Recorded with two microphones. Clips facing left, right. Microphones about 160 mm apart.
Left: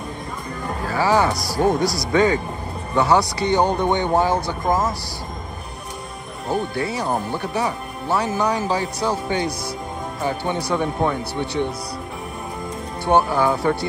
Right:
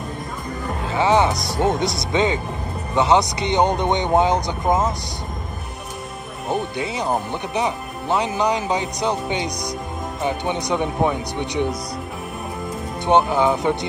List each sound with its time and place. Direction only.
0.8 s music: 20° right (ahead or behind)
1.5 s speech: 20° right (ahead or behind)
6.5 s speech: 20° right (ahead or behind)
13.0 s speech: 20° right (ahead or behind)